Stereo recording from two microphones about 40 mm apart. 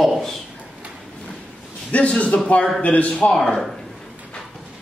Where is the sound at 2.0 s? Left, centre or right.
Left.